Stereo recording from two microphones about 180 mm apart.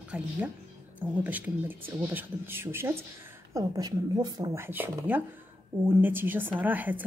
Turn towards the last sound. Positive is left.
turn(degrees=-10)  # may be behind; listen again after turning